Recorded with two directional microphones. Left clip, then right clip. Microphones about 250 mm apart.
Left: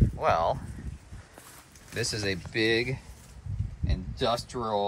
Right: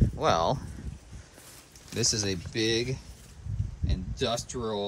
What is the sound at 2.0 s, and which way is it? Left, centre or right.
Speech, centre.